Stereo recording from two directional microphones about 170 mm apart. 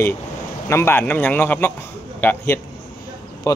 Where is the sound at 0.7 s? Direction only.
15° left (ahead or behind).